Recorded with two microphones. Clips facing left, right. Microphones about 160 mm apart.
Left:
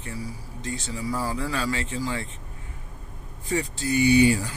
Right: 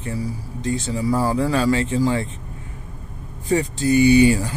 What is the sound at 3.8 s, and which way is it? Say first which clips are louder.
Speech: right 5 dB; 20° right (ahead or behind).